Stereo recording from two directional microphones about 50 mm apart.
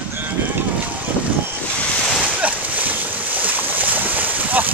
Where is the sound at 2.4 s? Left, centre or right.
Right.